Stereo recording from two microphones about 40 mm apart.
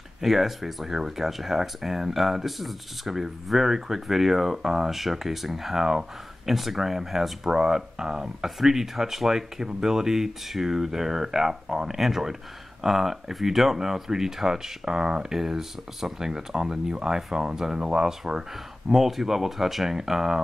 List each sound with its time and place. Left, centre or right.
0.2 s speech: centre; by 18.0 s right
18.0 s speech: centre